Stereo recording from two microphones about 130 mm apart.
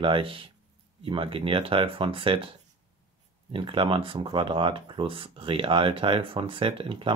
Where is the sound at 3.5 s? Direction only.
40° right (ahead or behind).